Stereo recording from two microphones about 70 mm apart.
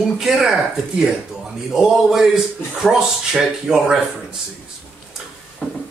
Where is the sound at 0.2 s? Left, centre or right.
Centre.